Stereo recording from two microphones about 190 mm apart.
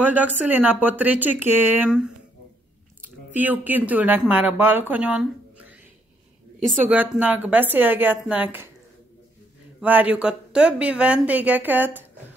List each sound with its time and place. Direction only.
0.4 s speech: 10° right (ahead or behind)
6.9 s speech: 10° right (ahead or behind)
9.8 s speech: 10° right (ahead or behind)